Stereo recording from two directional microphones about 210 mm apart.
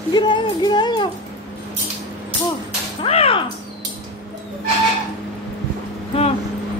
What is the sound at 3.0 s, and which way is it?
Speech, 30° left (ahead or behind).